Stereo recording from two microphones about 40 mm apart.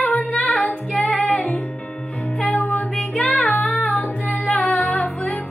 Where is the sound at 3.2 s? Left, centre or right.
Left.